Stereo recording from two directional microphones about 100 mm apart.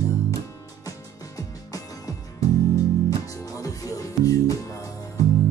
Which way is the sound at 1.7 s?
35° left (ahead or behind).